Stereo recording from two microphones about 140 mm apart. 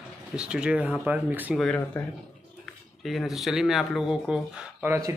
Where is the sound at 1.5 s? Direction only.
5° left (ahead or behind).